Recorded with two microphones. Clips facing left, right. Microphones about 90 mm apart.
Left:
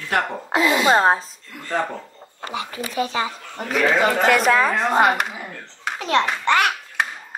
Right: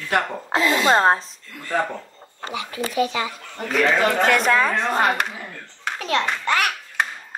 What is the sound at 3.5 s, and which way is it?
Speech, 10° left (ahead or behind).